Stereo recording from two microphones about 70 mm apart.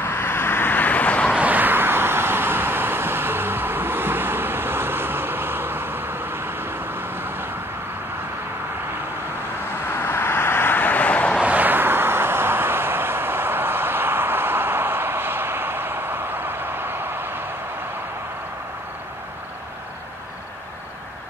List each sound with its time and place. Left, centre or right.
0.0 s vehicle: left
1.3 s vehicle: right
9.8 s vehicle: left
11.3 s vehicle: right